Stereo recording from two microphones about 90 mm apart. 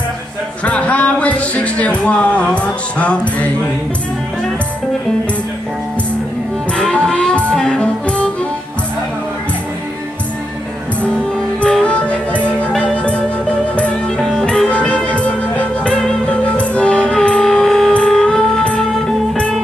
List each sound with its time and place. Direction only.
0.7 s speech: 15° left (ahead or behind)
6.8 s music: 10° left (ahead or behind)
11.0 s music: 15° left (ahead or behind)